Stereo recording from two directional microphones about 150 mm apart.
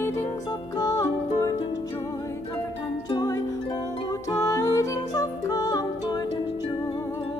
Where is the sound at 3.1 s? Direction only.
25° left (ahead or behind).